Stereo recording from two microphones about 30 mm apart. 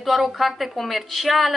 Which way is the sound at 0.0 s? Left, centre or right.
Centre.